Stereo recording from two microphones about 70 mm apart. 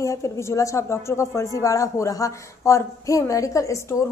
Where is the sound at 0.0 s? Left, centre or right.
Left.